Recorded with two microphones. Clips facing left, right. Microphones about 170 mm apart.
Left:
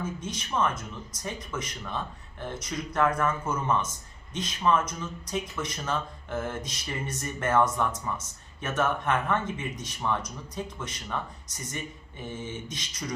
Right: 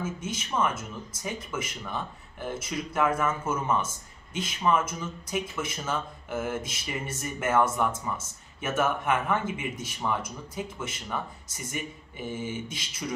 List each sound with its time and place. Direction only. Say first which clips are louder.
0.0 s speech: right 1 dB; 5° right (ahead or behind)